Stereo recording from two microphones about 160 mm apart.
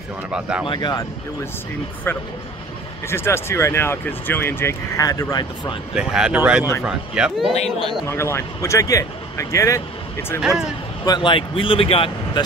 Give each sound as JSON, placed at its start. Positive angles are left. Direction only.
{"t": 0.3, "sound": "speech", "side_deg": -5}
{"t": 0.7, "sound": "speech", "side_deg": 25}
{"t": 2.1, "sound": "speech", "side_deg": 15}
{"t": 5.9, "sound": "speech", "side_deg": -5}
{"t": 8.1, "sound": "speech", "side_deg": 15}
{"t": 11.1, "sound": "speech", "side_deg": 30}